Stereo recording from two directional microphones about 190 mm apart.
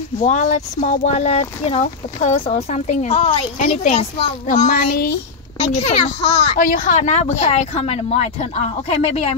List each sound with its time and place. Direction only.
0.2 s speech: 40° left (ahead or behind)